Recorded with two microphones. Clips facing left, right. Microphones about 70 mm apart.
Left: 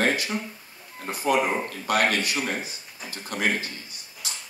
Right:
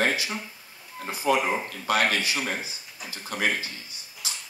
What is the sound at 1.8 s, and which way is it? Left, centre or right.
Speech, right.